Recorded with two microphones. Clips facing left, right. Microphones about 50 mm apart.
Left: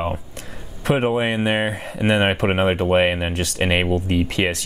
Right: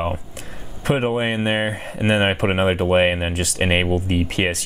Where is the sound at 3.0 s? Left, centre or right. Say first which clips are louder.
Right 1 dB; centre.